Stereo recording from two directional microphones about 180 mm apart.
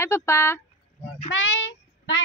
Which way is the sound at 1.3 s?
90° left.